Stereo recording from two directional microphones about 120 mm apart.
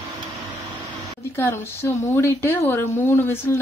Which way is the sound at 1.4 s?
20° left (ahead or behind).